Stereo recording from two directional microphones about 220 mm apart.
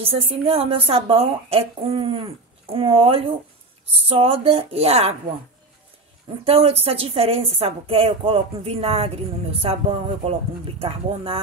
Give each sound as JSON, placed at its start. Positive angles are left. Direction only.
{"t": 0.0, "sound": "a woman's voice", "side_deg": -25}
{"t": 6.4, "sound": "a woman's voice", "side_deg": -25}